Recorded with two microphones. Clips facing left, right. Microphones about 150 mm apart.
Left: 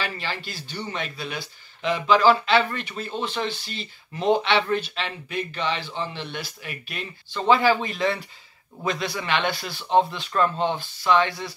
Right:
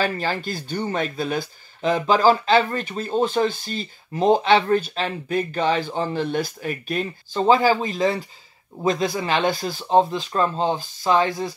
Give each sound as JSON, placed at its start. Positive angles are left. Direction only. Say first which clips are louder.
{"t": 0.0, "sound": "speech", "louder": "right 7 dB", "side_deg": -45}